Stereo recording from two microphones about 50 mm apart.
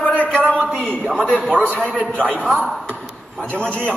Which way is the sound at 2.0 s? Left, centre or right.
Left.